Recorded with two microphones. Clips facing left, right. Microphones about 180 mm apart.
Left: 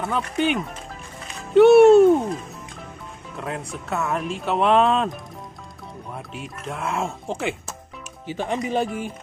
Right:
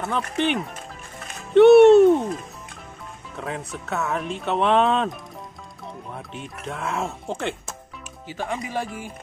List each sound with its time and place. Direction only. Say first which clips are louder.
0.0 s speech: left 1 dB; centre (ahead or behind)
3.3 s speech: left 1 dB; centre (ahead or behind)
8.3 s speech: left 4 dB; 20° left (ahead or behind)